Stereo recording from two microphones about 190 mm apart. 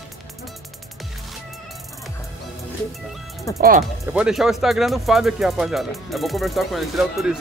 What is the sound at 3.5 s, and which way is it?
Speech, 20° left (ahead or behind).